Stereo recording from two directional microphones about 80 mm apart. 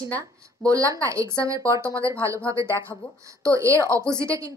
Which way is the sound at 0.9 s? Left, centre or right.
Right.